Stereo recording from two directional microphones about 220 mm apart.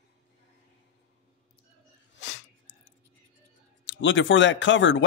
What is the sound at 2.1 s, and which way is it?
Dog, 60° left (ahead or behind).